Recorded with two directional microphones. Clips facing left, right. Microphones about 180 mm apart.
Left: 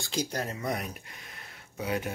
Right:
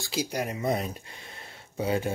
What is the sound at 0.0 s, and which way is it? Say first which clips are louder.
Speech: right 2 dB; 5° right (ahead or behind).